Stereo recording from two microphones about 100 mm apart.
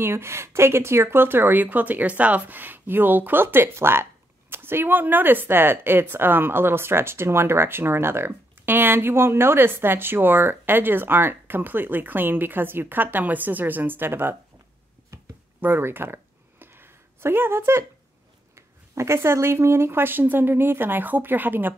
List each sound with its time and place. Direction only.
0.0 s speech: 25° right (ahead or behind)
15.6 s a sound: 20° right (ahead or behind)
18.5 s speech: 30° right (ahead or behind)